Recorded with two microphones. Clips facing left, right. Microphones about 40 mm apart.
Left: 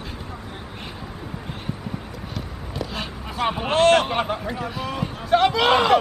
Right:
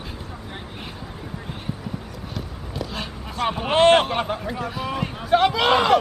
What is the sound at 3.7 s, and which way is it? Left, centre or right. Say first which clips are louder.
Speech: right 1 dB; centre.